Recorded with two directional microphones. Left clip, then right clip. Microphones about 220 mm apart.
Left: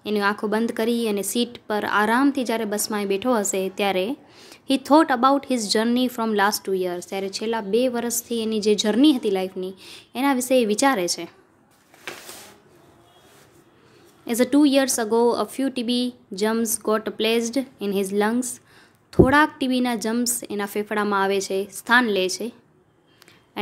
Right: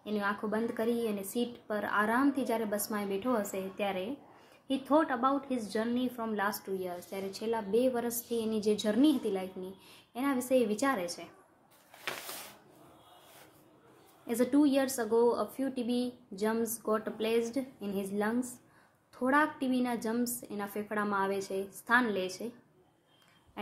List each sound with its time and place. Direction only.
0.0 s speech: 45° left (ahead or behind)
14.2 s speech: 35° left (ahead or behind)